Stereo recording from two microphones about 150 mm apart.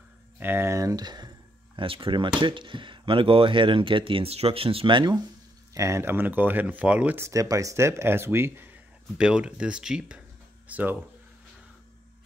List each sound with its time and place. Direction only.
0.4 s speech: 15° right (ahead or behind); by 5.2 s 30° right (ahead or behind)
5.8 s speech: 20° right (ahead or behind)